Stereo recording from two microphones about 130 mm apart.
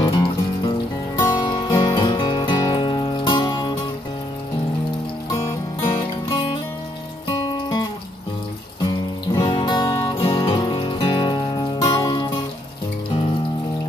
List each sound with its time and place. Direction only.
0.0 s music: 35° left (ahead or behind)
7.3 s music: 35° left (ahead or behind)
8.8 s music: 35° left (ahead or behind)